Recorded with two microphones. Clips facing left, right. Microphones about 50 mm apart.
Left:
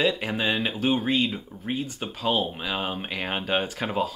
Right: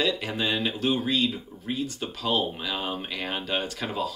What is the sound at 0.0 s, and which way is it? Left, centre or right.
Speech, centre.